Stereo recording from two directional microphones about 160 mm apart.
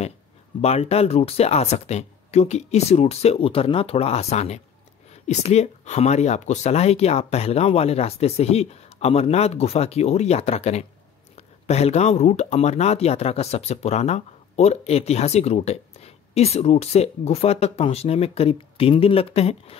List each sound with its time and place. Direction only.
0.6 s speech: 40° left (ahead or behind)